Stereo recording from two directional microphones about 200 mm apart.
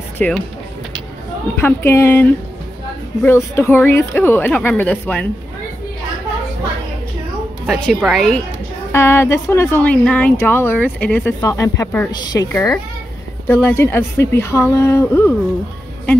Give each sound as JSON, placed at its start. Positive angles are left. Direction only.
{"t": 0.2, "sound": "speech", "side_deg": 5}
{"t": 1.6, "sound": "a woman's voice", "side_deg": 10}
{"t": 7.6, "sound": "speech", "side_deg": 0}
{"t": 8.9, "sound": "a woman's voice", "side_deg": 15}
{"t": 12.5, "sound": "a woman's voice", "side_deg": 10}